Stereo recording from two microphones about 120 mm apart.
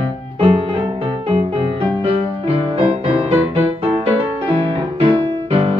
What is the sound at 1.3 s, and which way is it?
Music, 50° right (ahead or behind).